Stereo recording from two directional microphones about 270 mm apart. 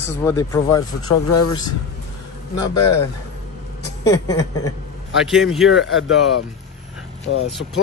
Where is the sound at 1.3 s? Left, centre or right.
Left.